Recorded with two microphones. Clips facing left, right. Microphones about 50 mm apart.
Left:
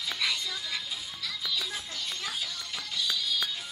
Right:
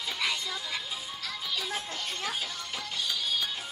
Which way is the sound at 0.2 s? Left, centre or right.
Centre.